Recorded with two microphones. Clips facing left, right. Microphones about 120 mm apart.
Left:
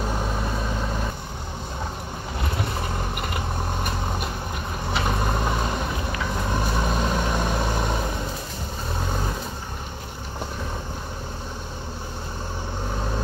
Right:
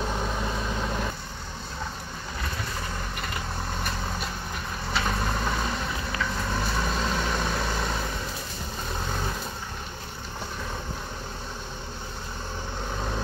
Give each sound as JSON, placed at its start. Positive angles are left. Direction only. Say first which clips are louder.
{"t": 4.9, "sound": "vehicle", "louder": "left 3 dB", "side_deg": 15}